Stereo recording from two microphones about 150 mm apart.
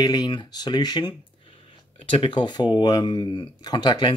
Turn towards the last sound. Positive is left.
turn(degrees=25)  # may be behind; listen again after turning